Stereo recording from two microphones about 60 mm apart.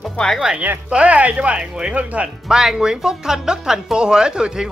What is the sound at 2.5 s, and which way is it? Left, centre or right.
A woman's voice, centre.